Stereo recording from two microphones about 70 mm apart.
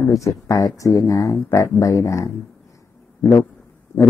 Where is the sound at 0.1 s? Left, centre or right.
Left.